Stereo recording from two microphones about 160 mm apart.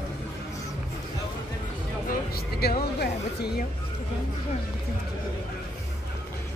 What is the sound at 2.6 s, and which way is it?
Speech, 80° left.